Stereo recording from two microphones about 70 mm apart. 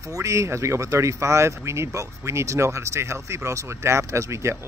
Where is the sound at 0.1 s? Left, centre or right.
Right.